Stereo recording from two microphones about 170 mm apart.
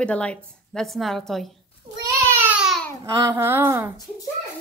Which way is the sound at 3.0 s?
20° right (ahead or behind).